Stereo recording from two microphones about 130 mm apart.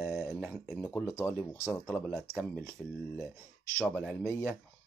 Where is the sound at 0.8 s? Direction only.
20° left (ahead or behind).